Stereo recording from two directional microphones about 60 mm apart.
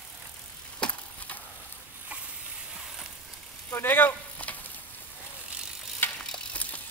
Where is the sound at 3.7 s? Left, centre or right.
Left.